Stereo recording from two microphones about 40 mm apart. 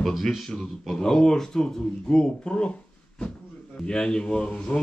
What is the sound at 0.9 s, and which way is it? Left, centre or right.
Speech, centre.